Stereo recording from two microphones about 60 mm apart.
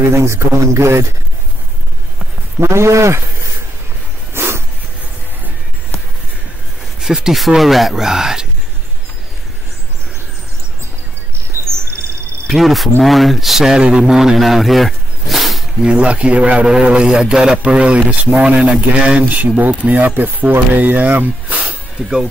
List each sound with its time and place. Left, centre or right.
0.1 s speech: right
2.6 s speech: right
4.3 s a sound: right
7.0 s a man's voice: centre
11.6 s a sound: right
12.4 s speech: centre
15.8 s a man's voice: centre
22.0 s a man's voice: centre